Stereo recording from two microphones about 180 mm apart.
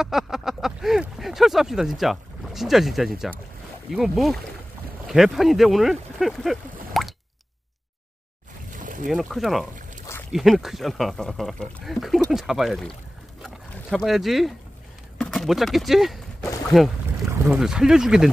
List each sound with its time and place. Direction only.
0.0 s speech: centre (ahead or behind)
8.6 s boat: 45° right (ahead or behind)
9.0 s speech: centre (ahead or behind)
13.4 s boat: centre (ahead or behind)
15.1 s speech: centre (ahead or behind)